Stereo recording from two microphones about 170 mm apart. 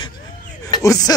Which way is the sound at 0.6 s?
20° left (ahead or behind).